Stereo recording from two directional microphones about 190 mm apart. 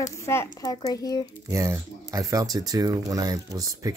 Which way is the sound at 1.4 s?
15° right (ahead or behind).